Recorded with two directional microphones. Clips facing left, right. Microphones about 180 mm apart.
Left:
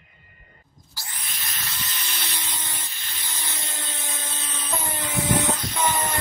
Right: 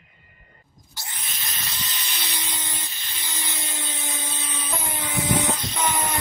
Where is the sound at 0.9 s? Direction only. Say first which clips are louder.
Right 1 dB; 20° right (ahead or behind).